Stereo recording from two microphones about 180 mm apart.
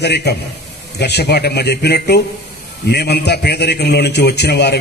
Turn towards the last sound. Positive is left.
turn(degrees=65)  # may be behind; listen again after turning